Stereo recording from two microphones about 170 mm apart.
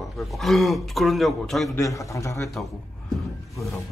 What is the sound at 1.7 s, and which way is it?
Speech, 20° left (ahead or behind).